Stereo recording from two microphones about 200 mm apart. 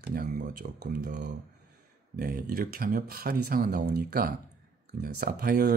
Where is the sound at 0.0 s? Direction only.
45° right (ahead or behind).